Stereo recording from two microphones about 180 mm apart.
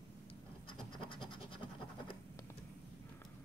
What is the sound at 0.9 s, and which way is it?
Scratch, 25° left (ahead or behind).